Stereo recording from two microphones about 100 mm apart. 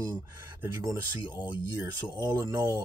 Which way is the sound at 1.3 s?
20° right (ahead or behind).